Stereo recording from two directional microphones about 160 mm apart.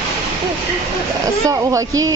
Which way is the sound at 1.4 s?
20° right (ahead or behind).